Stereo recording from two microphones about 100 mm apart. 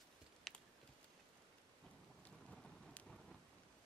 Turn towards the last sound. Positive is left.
turn(degrees=5)  # may be behind; listen again after turning